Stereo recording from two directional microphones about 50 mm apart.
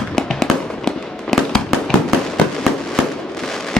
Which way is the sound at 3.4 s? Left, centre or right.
Centre.